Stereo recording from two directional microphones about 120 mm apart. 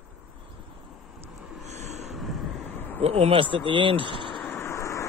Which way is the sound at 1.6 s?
70° right (ahead or behind).